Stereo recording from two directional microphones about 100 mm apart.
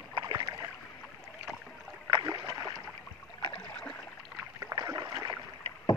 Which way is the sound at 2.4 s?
30° right (ahead or behind).